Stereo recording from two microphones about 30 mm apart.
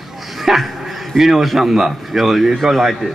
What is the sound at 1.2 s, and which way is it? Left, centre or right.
Speech, centre.